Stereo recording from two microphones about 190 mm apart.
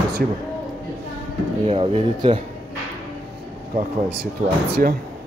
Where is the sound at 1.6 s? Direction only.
30° right (ahead or behind).